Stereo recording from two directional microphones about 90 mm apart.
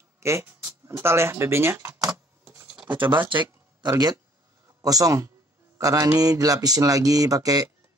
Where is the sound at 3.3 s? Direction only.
60° right (ahead or behind).